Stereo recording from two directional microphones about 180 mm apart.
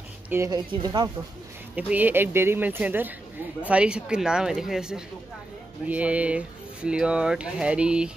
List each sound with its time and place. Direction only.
0.3 s speech: 15° right (ahead or behind)
1.8 s speech: 10° right (ahead or behind)